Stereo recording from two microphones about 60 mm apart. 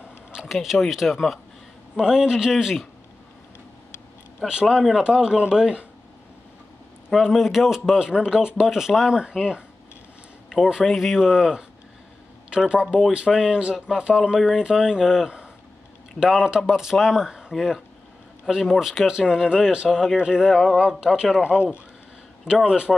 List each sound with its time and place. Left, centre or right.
0.5 s speech: centre
2.0 s a man's voice: centre
4.5 s a man's voice: centre
7.1 s a man's voice: centre
22.7 s a man's voice: centre